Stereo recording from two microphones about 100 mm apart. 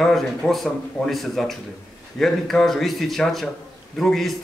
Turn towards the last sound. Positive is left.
turn(degrees=0)  # may be behind; listen again after turning